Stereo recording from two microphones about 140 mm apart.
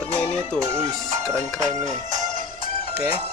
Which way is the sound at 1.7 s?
60° right (ahead or behind).